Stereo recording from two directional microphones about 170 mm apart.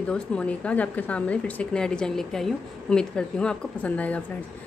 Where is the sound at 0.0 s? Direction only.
5° left (ahead or behind).